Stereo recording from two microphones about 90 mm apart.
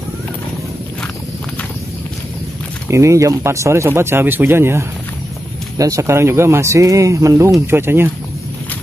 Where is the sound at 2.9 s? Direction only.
35° right (ahead or behind).